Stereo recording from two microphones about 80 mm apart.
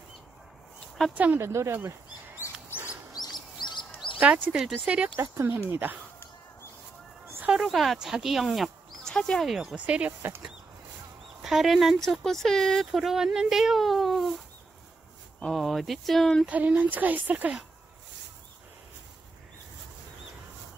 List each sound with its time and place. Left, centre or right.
1.1 s speech: right
1.4 s speech: right
3.2 s bird: left
3.5 s a sound: left
4.2 s speech: centre
7.4 s speech: centre
9.8 s speech: centre
11.4 s speech: centre
15.4 s speech: centre
16.4 s speech: centre